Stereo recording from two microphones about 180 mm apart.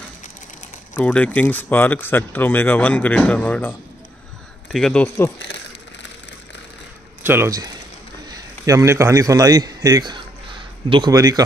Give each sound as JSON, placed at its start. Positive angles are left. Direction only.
{"t": 0.9, "sound": "speech", "side_deg": 10}
{"t": 4.7, "sound": "speech", "side_deg": 5}
{"t": 7.2, "sound": "a man's voice", "side_deg": -15}